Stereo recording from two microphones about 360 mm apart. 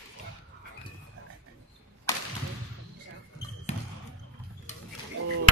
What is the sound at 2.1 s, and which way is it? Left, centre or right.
Whip, centre.